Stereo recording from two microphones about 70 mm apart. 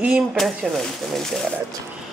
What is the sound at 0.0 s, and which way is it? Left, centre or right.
Speech, centre.